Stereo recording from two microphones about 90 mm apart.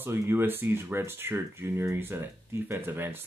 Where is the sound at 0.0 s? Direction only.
25° right (ahead or behind).